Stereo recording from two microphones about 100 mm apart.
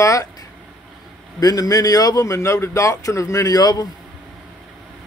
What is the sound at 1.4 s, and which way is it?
A man's voice, 40° left (ahead or behind).